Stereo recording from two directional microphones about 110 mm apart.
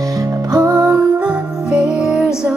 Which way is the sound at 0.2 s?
30° right (ahead or behind).